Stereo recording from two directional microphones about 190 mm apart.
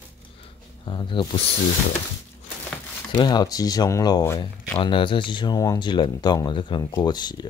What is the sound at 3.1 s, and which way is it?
Speech, 20° left (ahead or behind).